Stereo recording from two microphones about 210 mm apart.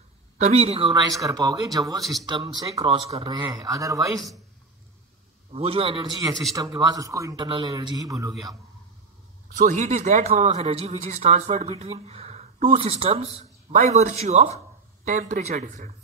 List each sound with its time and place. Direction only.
0.4 s a man's voice: 30° right (ahead or behind)
5.5 s a man's voice: 30° right (ahead or behind)
9.6 s speech: 35° right (ahead or behind)